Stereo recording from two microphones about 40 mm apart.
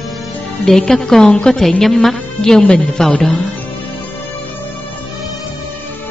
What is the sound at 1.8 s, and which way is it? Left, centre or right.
Speech, centre.